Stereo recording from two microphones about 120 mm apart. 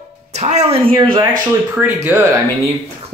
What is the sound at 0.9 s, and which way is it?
Speech, 45° right (ahead or behind).